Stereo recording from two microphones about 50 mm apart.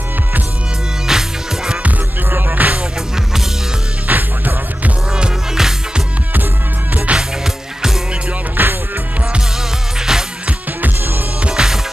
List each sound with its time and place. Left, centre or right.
1.0 s music: centre
2.3 s music: right
4.1 s music: right
5.1 s music: centre
7.2 s music: centre
8.6 s music: right
9.9 s music: centre
11.4 s music: centre